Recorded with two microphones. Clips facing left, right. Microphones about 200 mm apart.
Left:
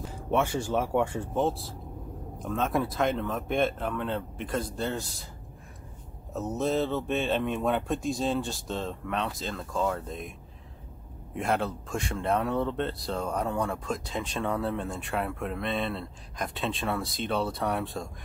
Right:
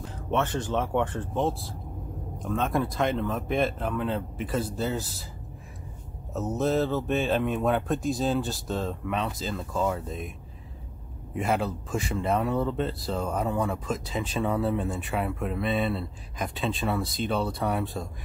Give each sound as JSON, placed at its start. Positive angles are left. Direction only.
{"t": 0.0, "sound": "speech", "side_deg": 10}
{"t": 1.4, "sound": "speech", "side_deg": 0}
{"t": 6.3, "sound": "speech", "side_deg": 0}
{"t": 11.3, "sound": "speech", "side_deg": 0}